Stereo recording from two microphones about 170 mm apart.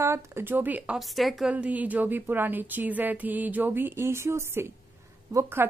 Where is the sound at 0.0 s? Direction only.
15° right (ahead or behind).